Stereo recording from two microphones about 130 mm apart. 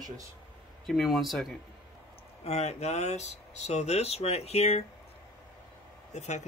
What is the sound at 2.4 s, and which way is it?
Speech, 55° left (ahead or behind).